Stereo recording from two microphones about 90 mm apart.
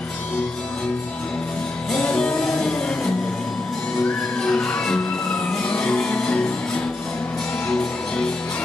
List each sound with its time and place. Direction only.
1.9 s music: 5° left (ahead or behind)
4.4 s music: 5° left (ahead or behind)
7.6 s music: 5° left (ahead or behind)